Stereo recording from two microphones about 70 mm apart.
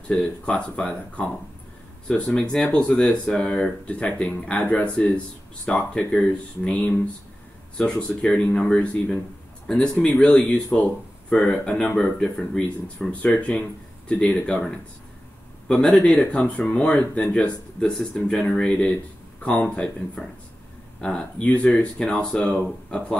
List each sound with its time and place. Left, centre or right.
0.5 s speech: centre
15.7 s speech: centre
21.0 s speech: centre